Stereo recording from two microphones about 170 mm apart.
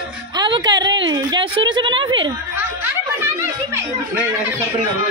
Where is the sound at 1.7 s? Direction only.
30° right (ahead or behind).